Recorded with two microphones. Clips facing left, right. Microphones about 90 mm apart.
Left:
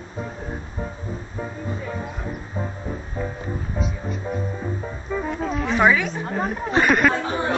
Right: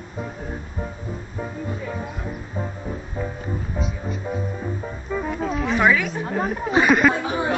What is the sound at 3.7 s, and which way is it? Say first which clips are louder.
Speech: even; centre (ahead or behind).